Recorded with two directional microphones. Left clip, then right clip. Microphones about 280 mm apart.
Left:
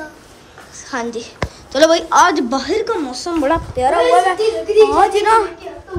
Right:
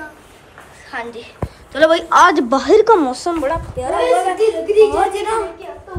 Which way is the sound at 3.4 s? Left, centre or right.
Centre.